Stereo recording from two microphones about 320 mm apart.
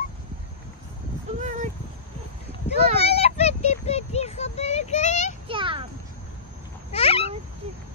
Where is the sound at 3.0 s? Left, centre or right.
Centre.